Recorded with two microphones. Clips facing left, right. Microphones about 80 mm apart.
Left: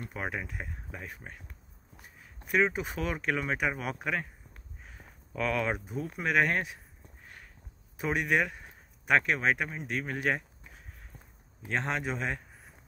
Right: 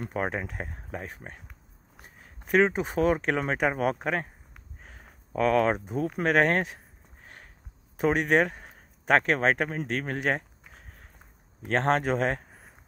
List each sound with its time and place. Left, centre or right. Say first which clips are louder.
0.0 s speech: right 6 dB; right
1.0 s speech: right 3 dB; right
2.0 s a sound: right 2 dB; right
3.5 s speech: right 6 dB; right
4.8 s a sound: right 1 dB; right
5.9 s speech: right 7 dB; right
6.2 s speech: right 4 dB; right
8.0 s speech: right 6 dB; right
9.7 s a man's voice: right 4 dB; right